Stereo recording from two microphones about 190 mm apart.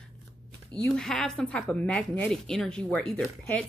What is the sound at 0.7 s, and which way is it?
Speech, 5° left (ahead or behind).